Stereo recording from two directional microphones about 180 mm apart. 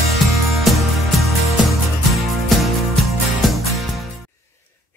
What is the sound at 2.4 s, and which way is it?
Music, centre (ahead or behind).